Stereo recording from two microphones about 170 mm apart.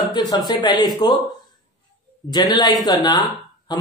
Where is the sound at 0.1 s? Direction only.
25° left (ahead or behind).